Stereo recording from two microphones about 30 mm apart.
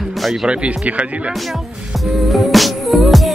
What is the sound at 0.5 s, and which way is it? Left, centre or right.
Speech, right.